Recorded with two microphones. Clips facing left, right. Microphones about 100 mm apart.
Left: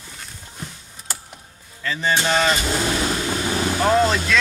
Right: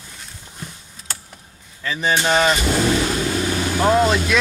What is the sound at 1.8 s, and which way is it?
Speech, 15° right (ahead or behind).